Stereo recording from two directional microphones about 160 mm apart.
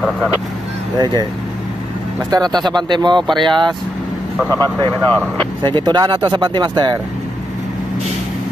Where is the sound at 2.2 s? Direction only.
25° right (ahead or behind).